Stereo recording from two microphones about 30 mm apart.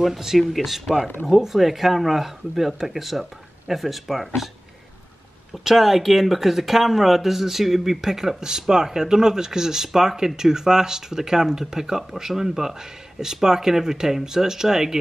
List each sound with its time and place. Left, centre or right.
0.0 s speech: centre
5.5 s speech: centre